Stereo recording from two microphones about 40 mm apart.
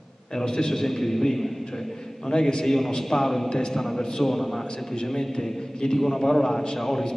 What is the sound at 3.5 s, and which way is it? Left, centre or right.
Speech, centre.